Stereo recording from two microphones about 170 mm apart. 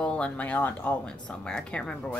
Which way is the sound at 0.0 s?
5° left (ahead or behind).